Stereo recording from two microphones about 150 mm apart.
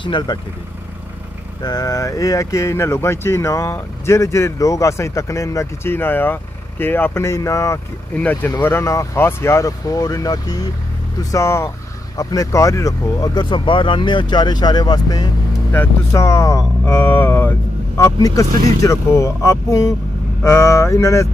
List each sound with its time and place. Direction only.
0.0 s speech: 30° left (ahead or behind)
1.6 s speech: 25° left (ahead or behind)
15.7 s speech: 15° left (ahead or behind)